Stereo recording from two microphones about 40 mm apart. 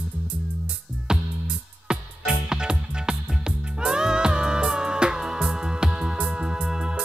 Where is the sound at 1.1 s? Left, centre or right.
Centre.